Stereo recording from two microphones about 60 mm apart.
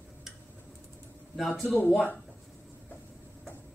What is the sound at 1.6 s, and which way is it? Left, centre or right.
Speech, left.